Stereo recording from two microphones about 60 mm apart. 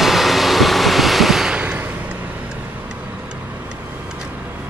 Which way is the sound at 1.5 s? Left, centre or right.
Right.